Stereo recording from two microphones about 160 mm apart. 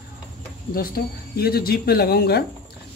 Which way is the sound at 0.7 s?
65° left (ahead or behind).